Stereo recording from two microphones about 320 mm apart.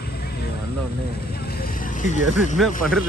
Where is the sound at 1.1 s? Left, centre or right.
Left.